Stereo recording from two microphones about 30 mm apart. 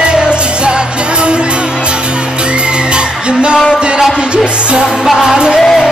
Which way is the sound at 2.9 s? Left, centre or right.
Right.